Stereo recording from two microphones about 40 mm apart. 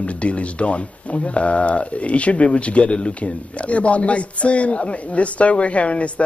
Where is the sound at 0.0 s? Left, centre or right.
Left.